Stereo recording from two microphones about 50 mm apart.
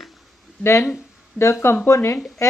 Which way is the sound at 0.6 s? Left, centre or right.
Left.